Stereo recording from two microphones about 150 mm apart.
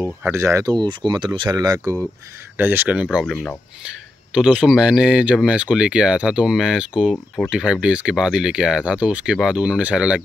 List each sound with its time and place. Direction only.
0.0 s speech: 15° right (ahead or behind)
2.5 s speech: 15° right (ahead or behind)